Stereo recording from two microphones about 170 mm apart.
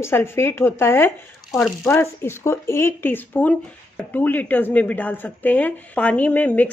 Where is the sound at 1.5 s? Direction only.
Centre (ahead or behind).